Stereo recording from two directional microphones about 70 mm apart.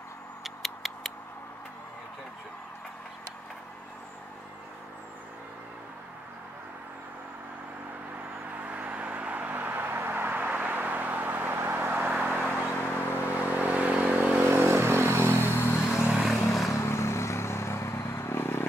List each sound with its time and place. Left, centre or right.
0.4 s a sound: centre
8.5 s vehicle: right
15.3 s vehicle: left
16.1 s vehicle: centre
16.7 s vehicle: left